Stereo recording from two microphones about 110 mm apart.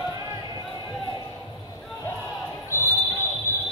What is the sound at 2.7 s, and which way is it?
Basketball bounce, 30° right (ahead or behind).